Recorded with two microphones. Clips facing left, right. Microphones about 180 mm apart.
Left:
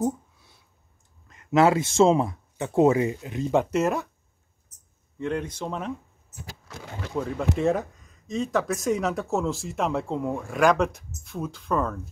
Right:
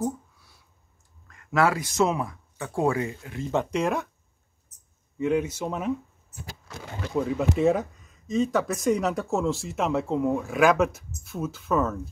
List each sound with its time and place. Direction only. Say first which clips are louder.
1.2 s speech: left 4 dB; 20° left (ahead or behind)
3.7 s speech: left 2 dB; centre (ahead or behind)
5.1 s speech: right 4 dB; 5° right (ahead or behind)
7.2 s speech: right 2 dB; 5° right (ahead or behind)